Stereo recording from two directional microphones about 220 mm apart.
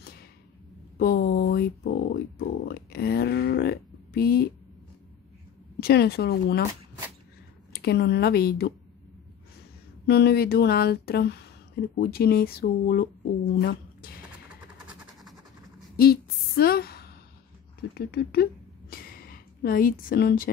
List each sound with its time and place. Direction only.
0.9 s speech: 45° left (ahead or behind)
5.8 s speech: 45° left (ahead or behind)
7.8 s speech: 50° left (ahead or behind)
10.0 s speech: 45° left (ahead or behind)
16.0 s a woman's voice: 45° left (ahead or behind)
17.9 s a sound: 45° left (ahead or behind)